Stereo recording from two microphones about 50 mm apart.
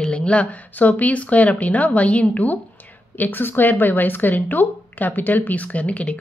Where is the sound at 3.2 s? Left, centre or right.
Left.